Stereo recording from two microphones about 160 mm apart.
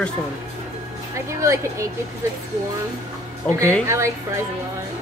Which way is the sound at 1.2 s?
20° right (ahead or behind).